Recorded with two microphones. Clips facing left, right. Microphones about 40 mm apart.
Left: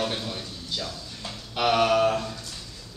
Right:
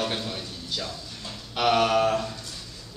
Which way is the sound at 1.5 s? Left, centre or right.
Centre.